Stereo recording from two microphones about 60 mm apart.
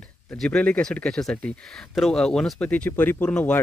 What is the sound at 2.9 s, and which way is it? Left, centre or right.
Speech, left.